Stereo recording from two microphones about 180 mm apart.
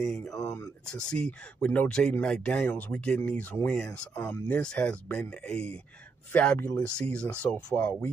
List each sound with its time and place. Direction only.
0.0 s speech: 5° left (ahead or behind)